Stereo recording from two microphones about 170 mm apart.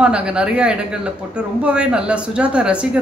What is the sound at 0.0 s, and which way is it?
Speech, 5° right (ahead or behind).